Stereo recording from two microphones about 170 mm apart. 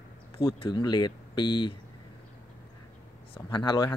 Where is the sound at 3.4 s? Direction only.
25° left (ahead or behind).